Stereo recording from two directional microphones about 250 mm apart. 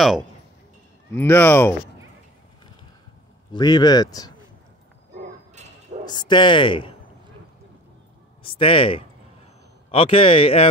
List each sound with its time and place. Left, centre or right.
1.1 s speech: centre
3.5 s speech: centre
5.6 s bow-wow: right
6.0 s speech: centre
8.4 s speech: left